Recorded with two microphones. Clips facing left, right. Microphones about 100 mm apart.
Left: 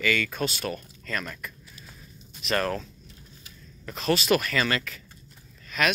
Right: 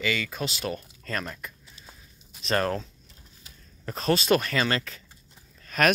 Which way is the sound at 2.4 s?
30° right (ahead or behind).